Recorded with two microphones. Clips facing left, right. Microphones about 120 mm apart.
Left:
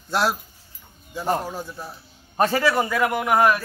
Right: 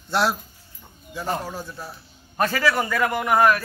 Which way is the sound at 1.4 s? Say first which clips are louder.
Left 1 dB; 15° left (ahead or behind).